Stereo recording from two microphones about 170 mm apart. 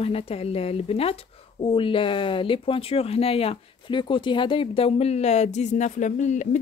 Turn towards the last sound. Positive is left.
turn(degrees=45)  # may be behind; listen again after turning